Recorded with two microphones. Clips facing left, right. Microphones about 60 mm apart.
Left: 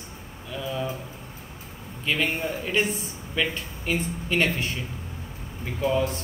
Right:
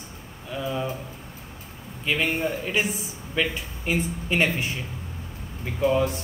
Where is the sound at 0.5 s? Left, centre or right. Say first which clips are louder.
Right 2 dB; centre.